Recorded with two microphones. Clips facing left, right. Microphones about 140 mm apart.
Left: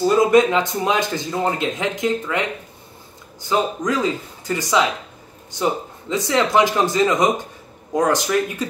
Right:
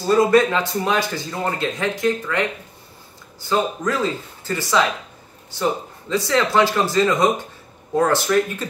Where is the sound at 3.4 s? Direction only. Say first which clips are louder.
Even; 15° left (ahead or behind).